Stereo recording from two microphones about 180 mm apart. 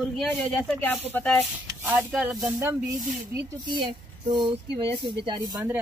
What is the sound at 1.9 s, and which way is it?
Speech, 5° right (ahead or behind).